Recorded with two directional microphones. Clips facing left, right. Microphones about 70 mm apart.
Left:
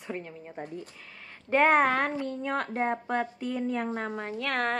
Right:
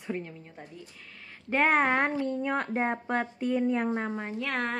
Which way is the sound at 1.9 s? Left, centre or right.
Right.